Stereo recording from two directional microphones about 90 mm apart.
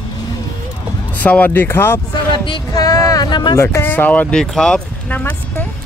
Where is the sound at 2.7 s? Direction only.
40° left (ahead or behind).